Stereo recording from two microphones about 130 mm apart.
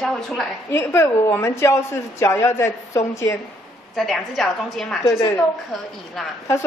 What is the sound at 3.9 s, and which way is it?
A woman's voice, centre (ahead or behind).